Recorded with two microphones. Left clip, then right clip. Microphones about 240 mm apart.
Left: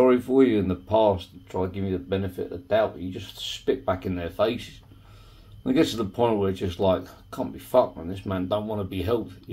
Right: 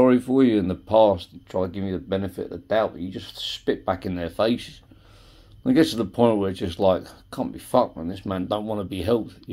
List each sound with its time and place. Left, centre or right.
0.0 s speech: right